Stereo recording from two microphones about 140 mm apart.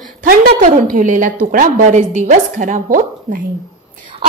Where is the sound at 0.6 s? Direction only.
75° right (ahead or behind).